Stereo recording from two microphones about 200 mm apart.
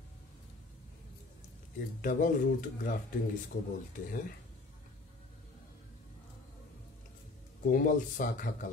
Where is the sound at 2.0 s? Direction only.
40° left (ahead or behind).